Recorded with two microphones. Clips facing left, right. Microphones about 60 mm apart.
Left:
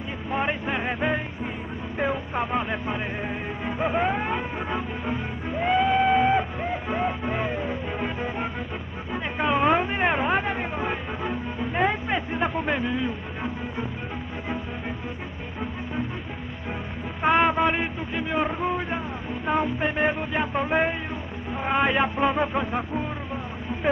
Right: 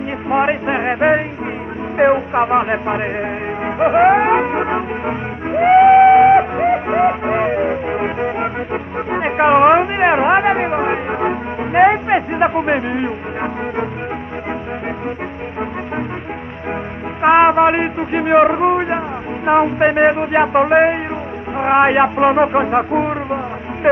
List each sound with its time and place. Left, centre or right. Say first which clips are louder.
0.3 s music: right 10 dB; right
17.2 s a sound: right 10 dB; right
21.5 s speech: right 10 dB; right